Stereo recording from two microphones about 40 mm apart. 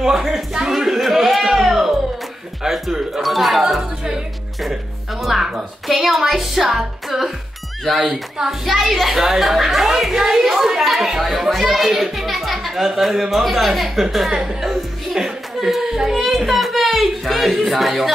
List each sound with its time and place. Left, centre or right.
0.0 s a sound: centre
2.6 s music: centre
3.2 s speech: centre
5.2 s a child's voice: centre
14.3 s speech: centre
14.6 s chuckle: centre
15.7 s a child's voice: centre